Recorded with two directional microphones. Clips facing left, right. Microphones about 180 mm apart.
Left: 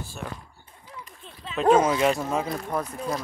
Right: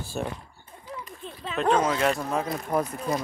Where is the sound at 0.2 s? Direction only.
35° right (ahead or behind).